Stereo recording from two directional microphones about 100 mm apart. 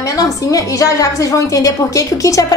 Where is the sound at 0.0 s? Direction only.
35° left (ahead or behind).